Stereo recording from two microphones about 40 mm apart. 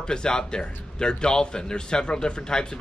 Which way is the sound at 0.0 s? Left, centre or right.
Centre.